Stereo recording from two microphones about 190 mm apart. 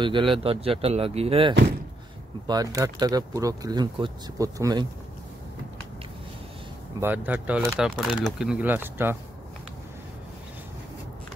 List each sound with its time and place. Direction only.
0.0 s speech: 25° right (ahead or behind)
1.5 s speech: 65° right (ahead or behind)
2.4 s speech: 20° right (ahead or behind)
7.0 s speech: 10° right (ahead or behind)